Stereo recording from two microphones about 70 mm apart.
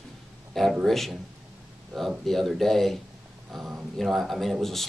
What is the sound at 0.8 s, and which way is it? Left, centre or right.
Speech, centre.